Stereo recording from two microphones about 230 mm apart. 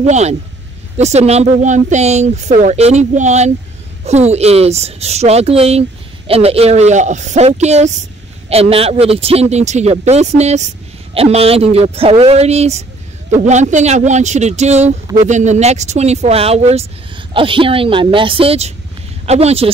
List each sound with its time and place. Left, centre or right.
0.0 s speech: right